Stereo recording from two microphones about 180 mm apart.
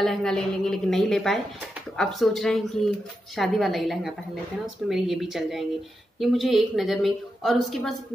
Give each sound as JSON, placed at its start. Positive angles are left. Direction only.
{"t": 0.0, "sound": "speech", "side_deg": 0}